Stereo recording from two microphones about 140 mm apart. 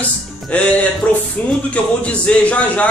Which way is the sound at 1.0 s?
10° left (ahead or behind).